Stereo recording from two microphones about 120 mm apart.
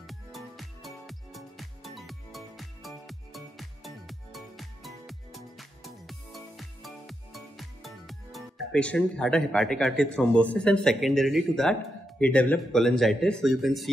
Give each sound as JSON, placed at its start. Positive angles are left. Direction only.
{"t": 0.0, "sound": "music", "side_deg": 0}
{"t": 12.2, "sound": "speech", "side_deg": 10}